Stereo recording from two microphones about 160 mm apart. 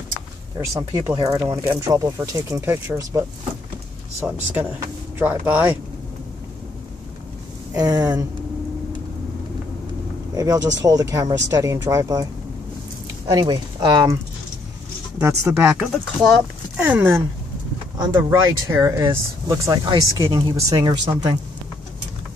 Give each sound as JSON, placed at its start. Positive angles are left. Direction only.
{"t": 0.6, "sound": "speech", "side_deg": -20}
{"t": 7.7, "sound": "speech", "side_deg": -25}
{"t": 10.3, "sound": "speech", "side_deg": -25}
{"t": 13.3, "sound": "speech", "side_deg": -25}
{"t": 16.3, "sound": "speech", "side_deg": 0}
{"t": 16.8, "sound": "speech", "side_deg": -10}